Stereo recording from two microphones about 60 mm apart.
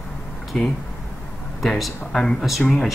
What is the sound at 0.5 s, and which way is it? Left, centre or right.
Speech, centre.